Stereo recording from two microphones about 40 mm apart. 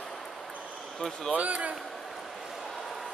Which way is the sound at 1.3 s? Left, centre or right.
Right.